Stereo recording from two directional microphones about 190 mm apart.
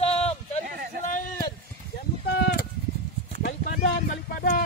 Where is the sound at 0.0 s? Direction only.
30° left (ahead or behind).